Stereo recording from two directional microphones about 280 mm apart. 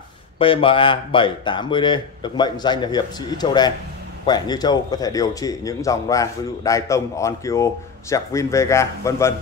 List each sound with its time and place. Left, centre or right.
0.4 s a man's voice: centre